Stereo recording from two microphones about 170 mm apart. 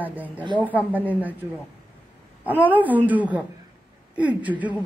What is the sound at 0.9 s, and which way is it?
Speech, 10° right (ahead or behind).